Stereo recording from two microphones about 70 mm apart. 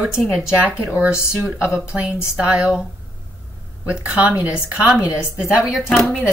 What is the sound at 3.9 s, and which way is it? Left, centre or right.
Speech, centre.